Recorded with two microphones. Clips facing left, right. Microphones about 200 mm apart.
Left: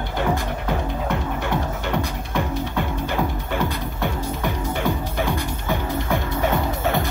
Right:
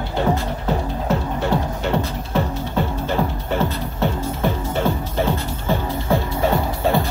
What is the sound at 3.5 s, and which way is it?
Music, 15° left (ahead or behind).